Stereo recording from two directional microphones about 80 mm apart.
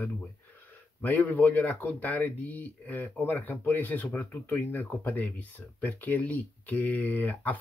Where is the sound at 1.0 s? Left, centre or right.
Left.